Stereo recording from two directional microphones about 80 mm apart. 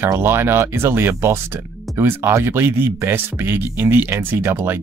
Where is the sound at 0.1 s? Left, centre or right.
Right.